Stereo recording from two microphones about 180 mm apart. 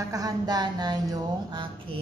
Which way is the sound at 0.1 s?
20° right (ahead or behind).